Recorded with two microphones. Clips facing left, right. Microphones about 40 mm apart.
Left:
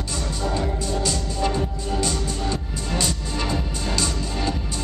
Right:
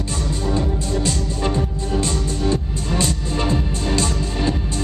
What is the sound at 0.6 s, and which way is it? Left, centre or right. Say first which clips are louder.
Music: right 3 dB; right.